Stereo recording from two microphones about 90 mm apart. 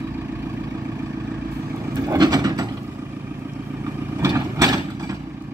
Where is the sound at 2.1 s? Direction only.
45° right (ahead or behind).